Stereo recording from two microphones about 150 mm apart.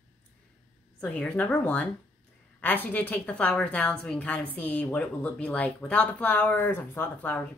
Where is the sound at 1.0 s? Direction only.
10° left (ahead or behind).